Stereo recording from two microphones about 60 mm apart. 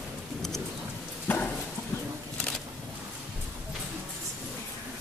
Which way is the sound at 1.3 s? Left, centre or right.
Left.